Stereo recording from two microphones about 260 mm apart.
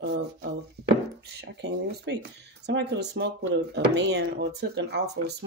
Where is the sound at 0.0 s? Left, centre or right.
Right.